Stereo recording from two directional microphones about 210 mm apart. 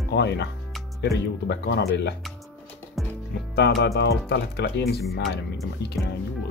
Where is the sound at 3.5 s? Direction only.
55° left (ahead or behind).